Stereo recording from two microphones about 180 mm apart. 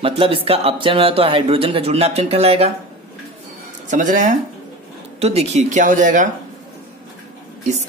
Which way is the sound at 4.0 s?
45° right (ahead or behind).